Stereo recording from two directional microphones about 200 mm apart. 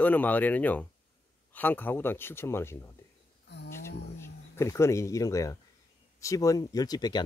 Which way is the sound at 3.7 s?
15° left (ahead or behind).